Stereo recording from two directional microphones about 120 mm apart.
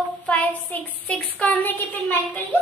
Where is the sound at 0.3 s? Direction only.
15° left (ahead or behind).